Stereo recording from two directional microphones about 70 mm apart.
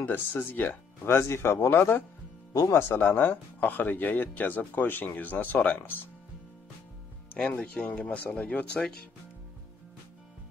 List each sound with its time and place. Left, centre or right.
0.0 s speech: left
2.5 s speech: left
3.0 s speech: left
7.4 s speech: centre